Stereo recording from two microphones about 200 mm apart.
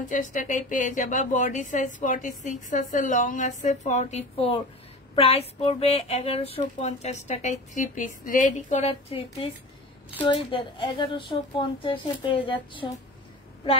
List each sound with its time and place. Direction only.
0.0 s a woman's voice: 40° left (ahead or behind)